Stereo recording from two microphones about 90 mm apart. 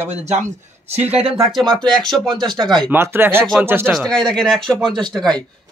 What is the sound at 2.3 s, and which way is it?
Speech, 55° right (ahead or behind).